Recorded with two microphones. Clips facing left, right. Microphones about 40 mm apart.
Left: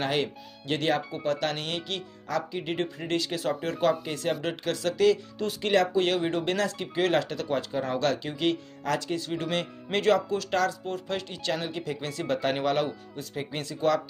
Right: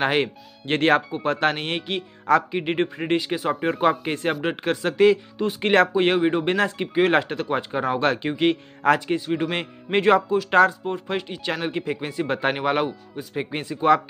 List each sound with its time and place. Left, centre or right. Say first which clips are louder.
0.0 s speech: right 6 dB; right
1.1 s speech: right 6 dB; right
2.2 s speech: right 10 dB; right
5.6 s speech: right 6 dB; right
5.9 s speech: right 6 dB; right
9.2 s speech: right 5 dB; right
10.9 s speech: right 5 dB; right
12.0 s speech: right 2 dB; centre